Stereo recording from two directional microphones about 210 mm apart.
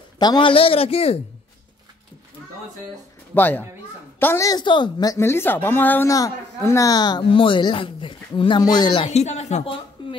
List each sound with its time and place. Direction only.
0.2 s a woman's voice: 20° left (ahead or behind)
3.3 s a woman's voice: 10° left (ahead or behind); by 9.8 s 30° left (ahead or behind)
10.0 s a sound: 20° left (ahead or behind)